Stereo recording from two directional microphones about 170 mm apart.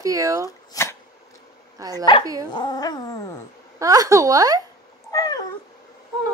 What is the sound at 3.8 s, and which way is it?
Speech, 20° right (ahead or behind).